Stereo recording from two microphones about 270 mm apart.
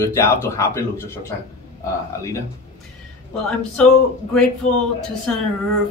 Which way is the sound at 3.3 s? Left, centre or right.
Centre.